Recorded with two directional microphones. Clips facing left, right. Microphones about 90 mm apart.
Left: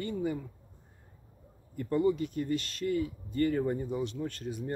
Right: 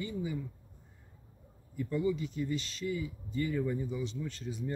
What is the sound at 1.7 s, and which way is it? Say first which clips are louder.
Speech: left 4 dB; 50° left (ahead or behind).